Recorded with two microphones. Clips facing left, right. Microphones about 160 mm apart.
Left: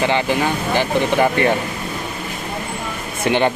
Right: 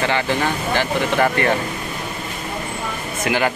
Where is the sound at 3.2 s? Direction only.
25° left (ahead or behind).